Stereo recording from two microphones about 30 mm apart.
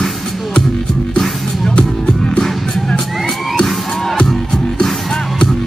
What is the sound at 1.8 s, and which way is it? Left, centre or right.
Music, left.